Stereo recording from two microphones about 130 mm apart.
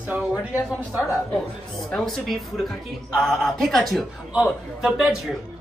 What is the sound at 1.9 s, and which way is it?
A man's voice, 5° left (ahead or behind).